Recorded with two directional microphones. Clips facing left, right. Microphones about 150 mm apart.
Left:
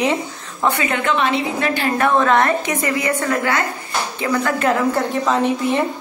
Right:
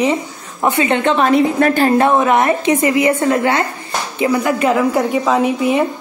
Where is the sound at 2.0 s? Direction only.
20° right (ahead or behind).